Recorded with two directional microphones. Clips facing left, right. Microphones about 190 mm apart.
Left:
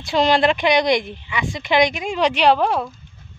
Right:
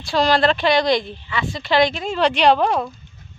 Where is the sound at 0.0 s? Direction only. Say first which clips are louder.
Left 1 dB; 20° left (ahead or behind).